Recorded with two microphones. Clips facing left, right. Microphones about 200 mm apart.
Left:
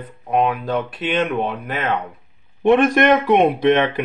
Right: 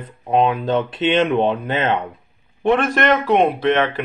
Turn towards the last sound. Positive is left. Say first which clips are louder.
# left 2 dB
turn(degrees=15)  # may be behind; listen again after turning